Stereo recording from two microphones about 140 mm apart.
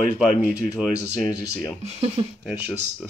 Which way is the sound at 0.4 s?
10° right (ahead or behind).